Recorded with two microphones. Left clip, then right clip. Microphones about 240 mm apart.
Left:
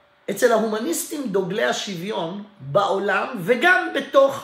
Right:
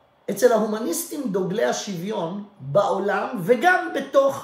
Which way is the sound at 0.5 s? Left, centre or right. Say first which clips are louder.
Left 1 dB; centre.